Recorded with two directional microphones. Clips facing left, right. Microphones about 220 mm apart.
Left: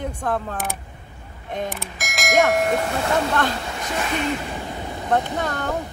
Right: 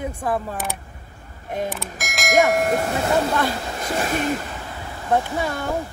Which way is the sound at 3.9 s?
45° right (ahead or behind).